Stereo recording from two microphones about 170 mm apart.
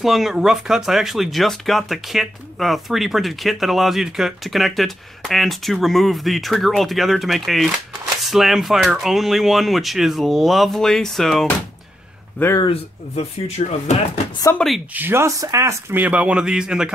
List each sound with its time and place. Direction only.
0.0 s speech: centre (ahead or behind)
13.1 s speech: 40° left (ahead or behind)
14.6 s speech: 5° left (ahead or behind)
15.0 s speech: 15° right (ahead or behind)